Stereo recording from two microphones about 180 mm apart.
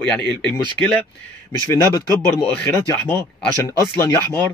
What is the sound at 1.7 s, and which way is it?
Speech, 20° left (ahead or behind).